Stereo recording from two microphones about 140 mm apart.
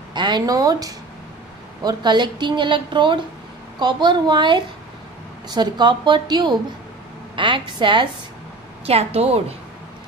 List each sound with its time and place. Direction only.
0.1 s a woman's voice: 35° right (ahead or behind)
8.8 s a woman's voice: 45° right (ahead or behind)